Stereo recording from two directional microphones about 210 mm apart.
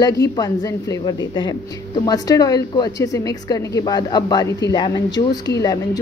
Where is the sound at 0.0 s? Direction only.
20° left (ahead or behind).